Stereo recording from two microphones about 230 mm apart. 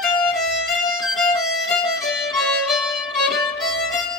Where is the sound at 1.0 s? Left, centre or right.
Centre.